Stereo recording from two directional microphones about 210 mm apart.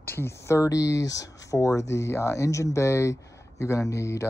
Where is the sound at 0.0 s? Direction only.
10° left (ahead or behind).